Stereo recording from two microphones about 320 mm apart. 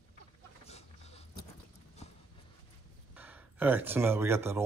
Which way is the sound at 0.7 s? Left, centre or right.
Centre.